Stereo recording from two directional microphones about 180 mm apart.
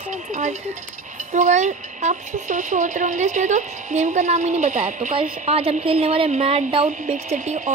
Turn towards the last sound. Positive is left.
turn(degrees=-40)  # may be behind; listen again after turning